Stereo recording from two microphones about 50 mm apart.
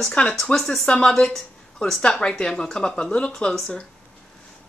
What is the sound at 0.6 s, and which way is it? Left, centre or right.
A woman's voice, centre.